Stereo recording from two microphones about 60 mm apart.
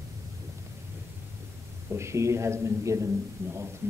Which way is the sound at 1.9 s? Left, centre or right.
Right.